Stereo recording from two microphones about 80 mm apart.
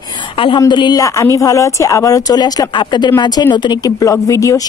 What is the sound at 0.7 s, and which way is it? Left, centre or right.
Speech, left.